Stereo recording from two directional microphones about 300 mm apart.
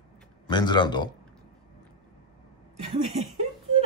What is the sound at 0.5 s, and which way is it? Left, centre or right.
Speech, centre.